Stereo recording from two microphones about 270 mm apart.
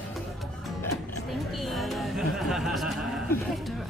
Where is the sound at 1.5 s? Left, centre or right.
Centre.